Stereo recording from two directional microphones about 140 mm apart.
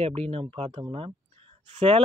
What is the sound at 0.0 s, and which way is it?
Speech, 45° right (ahead or behind).